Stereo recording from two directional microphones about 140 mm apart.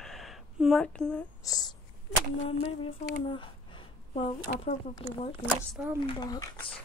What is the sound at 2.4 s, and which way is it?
Speech, 40° left (ahead or behind).